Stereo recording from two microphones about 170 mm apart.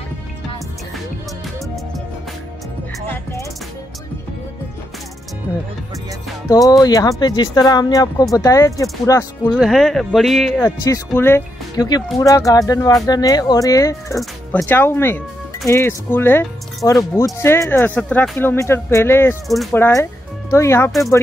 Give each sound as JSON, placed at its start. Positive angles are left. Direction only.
{"t": 3.1, "sound": "music", "side_deg": 15}
{"t": 6.8, "sound": "speech", "side_deg": 20}
{"t": 9.6, "sound": "speech", "side_deg": 0}
{"t": 10.6, "sound": "speech", "side_deg": 20}
{"t": 14.1, "sound": "speech", "side_deg": 5}
{"t": 19.4, "sound": "speech", "side_deg": 0}
{"t": 19.7, "sound": "speech", "side_deg": 15}